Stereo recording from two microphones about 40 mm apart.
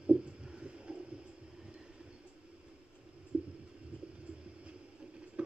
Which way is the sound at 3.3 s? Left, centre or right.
Right.